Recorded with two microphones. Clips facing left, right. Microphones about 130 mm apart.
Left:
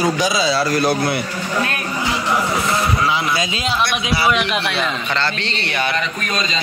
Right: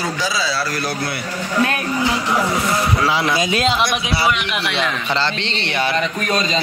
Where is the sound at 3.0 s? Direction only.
35° right (ahead or behind).